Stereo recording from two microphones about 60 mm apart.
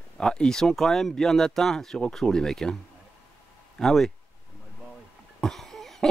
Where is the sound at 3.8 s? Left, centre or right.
Centre.